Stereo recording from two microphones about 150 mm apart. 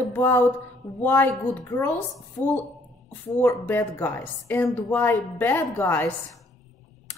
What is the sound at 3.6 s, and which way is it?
A woman's voice, 15° left (ahead or behind).